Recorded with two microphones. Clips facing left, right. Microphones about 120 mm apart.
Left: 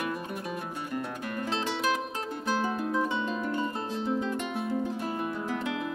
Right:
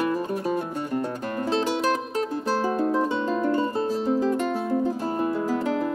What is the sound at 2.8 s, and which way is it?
Music, 30° right (ahead or behind).